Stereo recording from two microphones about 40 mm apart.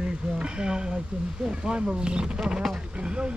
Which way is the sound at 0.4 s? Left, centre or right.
Right.